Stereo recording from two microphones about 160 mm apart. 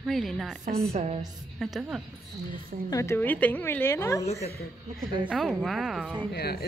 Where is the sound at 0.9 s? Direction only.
40° right (ahead or behind).